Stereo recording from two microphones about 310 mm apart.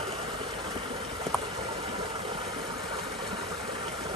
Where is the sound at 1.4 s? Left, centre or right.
Centre.